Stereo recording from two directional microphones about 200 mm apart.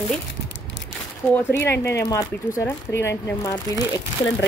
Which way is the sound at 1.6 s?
15° left (ahead or behind).